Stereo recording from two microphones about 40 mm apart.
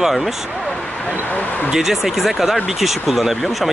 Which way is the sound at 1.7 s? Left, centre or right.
Centre.